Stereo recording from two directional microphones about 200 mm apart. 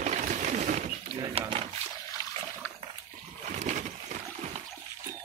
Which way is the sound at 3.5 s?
35° right (ahead or behind).